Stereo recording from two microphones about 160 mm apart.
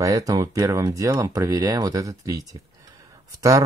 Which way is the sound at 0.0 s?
20° right (ahead or behind).